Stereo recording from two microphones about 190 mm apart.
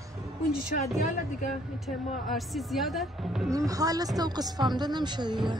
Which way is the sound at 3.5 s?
20° right (ahead or behind).